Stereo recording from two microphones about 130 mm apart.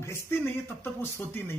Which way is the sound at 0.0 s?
20° left (ahead or behind).